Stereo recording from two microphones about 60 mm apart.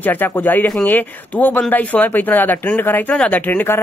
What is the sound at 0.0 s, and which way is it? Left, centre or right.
Speech, left.